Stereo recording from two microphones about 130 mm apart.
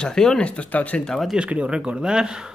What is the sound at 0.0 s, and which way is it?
Speech, 5° left (ahead or behind).